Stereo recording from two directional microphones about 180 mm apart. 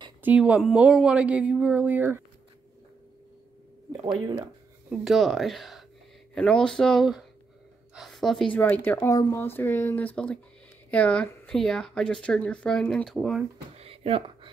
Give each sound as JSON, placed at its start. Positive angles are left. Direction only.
{"t": 0.2, "sound": "speech", "side_deg": -10}
{"t": 4.8, "sound": "speech", "side_deg": 0}
{"t": 13.7, "sound": "a sound", "side_deg": -30}